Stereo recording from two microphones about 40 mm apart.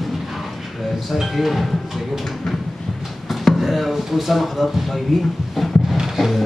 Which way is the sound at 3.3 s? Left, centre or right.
Centre.